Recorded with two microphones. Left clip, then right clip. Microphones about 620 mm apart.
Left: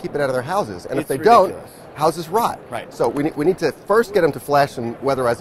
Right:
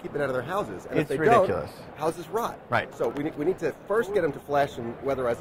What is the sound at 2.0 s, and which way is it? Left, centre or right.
Speech, left.